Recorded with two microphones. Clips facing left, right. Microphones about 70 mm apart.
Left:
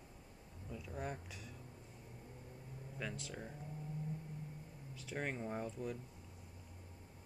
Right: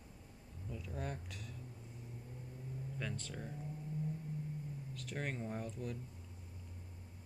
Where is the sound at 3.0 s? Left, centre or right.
Centre.